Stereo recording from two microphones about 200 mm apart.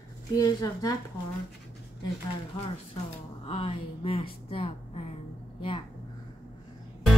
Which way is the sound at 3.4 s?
30° left (ahead or behind).